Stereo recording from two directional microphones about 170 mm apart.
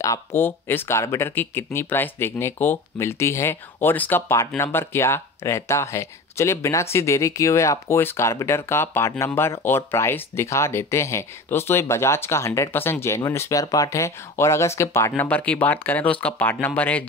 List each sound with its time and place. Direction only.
0.0 s speech: 15° left (ahead or behind)